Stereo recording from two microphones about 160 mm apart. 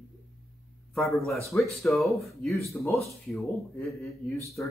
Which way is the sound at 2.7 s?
15° left (ahead or behind).